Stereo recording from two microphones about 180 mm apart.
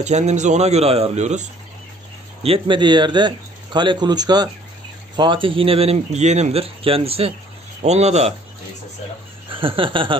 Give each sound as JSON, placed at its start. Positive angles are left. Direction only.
{"t": 0.0, "sound": "speech", "side_deg": -40}
{"t": 2.4, "sound": "speech", "side_deg": -30}
{"t": 9.5, "sound": "speech", "side_deg": -30}